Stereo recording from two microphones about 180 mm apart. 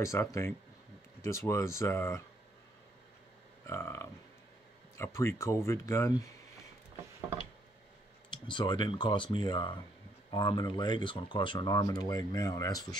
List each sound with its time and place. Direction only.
0.0 s speech: 15° left (ahead or behind)
3.6 s speech: 15° left (ahead or behind)
8.3 s speech: 25° left (ahead or behind)